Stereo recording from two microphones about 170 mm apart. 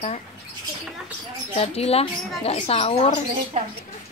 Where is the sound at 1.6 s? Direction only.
35° left (ahead or behind).